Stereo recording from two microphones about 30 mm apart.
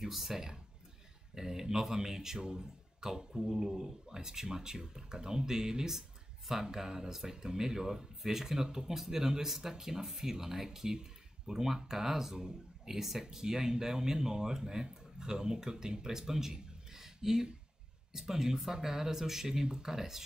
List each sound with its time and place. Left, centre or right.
0.1 s speech: centre
1.3 s speech: centre
8.9 s speech: centre
16.9 s a sound: centre
18.1 s speech: centre